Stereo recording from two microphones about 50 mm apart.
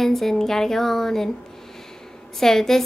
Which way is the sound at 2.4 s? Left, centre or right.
Centre.